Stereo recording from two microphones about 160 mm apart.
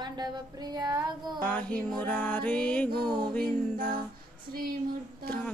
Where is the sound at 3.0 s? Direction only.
25° right (ahead or behind).